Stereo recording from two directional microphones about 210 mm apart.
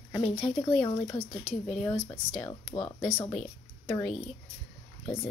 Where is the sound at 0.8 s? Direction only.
25° left (ahead or behind).